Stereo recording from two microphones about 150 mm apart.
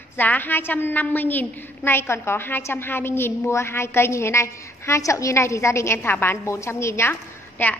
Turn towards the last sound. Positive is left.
turn(degrees=10)  # may be behind; listen again after turning